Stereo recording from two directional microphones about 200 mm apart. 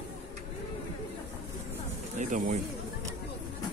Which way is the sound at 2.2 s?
40° right (ahead or behind).